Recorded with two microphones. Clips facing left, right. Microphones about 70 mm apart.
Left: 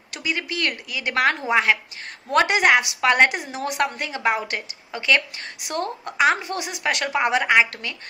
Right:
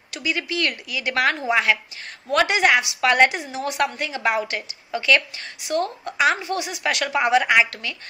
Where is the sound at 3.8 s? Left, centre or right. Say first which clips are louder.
Even; left.